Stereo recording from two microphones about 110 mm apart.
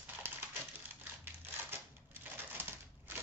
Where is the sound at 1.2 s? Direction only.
20° right (ahead or behind).